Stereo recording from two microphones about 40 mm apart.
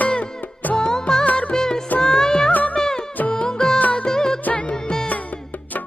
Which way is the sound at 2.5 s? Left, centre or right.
Left.